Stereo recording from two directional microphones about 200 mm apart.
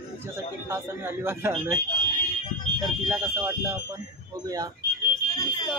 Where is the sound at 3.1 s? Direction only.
10° right (ahead or behind).